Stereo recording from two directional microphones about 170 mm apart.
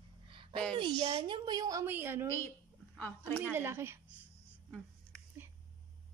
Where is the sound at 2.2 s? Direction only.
15° left (ahead or behind).